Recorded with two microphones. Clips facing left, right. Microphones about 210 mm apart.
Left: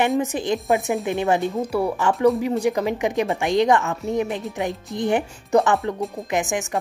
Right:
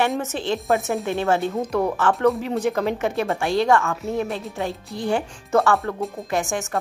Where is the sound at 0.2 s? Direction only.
15° left (ahead or behind).